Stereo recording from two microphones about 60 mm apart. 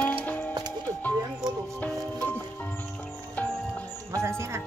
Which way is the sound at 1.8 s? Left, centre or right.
Left.